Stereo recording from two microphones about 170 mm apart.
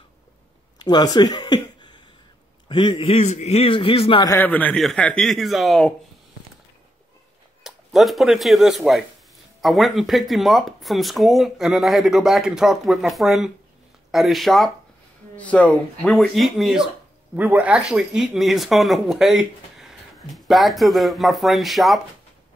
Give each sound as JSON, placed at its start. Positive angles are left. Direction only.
{"t": 0.8, "sound": "a man's voice", "side_deg": 25}
{"t": 4.3, "sound": "speech", "side_deg": 10}
{"t": 7.6, "sound": "speech", "side_deg": 0}